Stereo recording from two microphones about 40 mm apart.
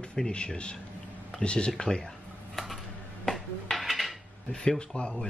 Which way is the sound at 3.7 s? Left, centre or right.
Centre.